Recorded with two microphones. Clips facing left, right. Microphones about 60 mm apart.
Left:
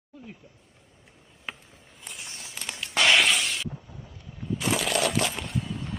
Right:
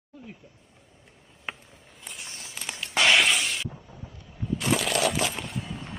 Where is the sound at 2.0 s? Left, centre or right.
Centre.